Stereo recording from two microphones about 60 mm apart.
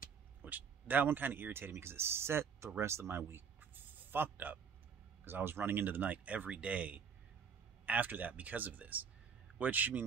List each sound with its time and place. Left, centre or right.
0.4 s speech: right